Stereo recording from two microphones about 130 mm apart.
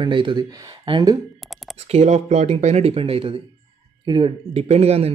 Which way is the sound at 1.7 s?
55° right (ahead or behind).